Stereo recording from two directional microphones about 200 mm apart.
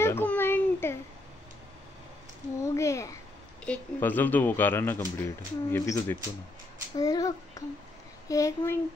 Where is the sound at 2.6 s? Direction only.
15° left (ahead or behind).